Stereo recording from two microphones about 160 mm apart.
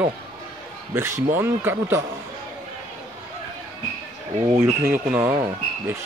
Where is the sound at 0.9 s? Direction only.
15° right (ahead or behind).